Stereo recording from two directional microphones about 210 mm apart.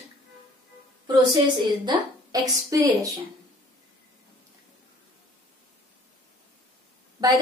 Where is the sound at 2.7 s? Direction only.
15° right (ahead or behind).